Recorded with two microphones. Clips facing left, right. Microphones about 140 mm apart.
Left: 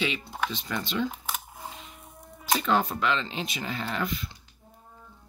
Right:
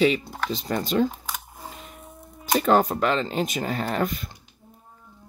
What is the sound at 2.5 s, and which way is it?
Speech, 45° right (ahead or behind).